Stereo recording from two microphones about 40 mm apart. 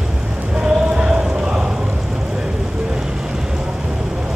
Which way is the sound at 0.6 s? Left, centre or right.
Right.